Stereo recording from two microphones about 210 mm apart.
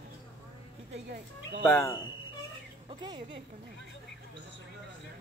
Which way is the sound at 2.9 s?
20° right (ahead or behind).